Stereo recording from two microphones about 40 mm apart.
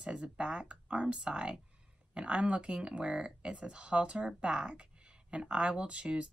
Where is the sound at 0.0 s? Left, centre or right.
Right.